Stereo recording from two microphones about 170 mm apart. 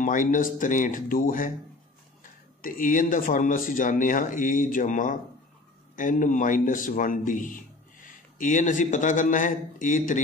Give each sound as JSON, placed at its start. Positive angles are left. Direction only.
{"t": 0.0, "sound": "speech", "side_deg": 50}
{"t": 2.6, "sound": "speech", "side_deg": 50}